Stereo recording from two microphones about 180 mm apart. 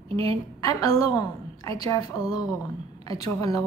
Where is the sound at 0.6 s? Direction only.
20° left (ahead or behind).